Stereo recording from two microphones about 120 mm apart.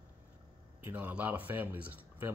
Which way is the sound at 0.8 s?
10° right (ahead or behind).